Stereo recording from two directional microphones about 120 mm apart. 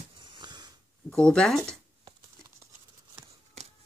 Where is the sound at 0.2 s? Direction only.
40° right (ahead or behind).